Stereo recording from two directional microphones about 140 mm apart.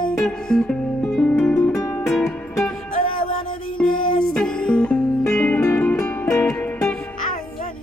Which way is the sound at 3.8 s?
80° left.